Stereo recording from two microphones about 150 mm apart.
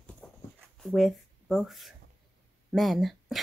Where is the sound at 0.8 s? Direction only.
Centre (ahead or behind).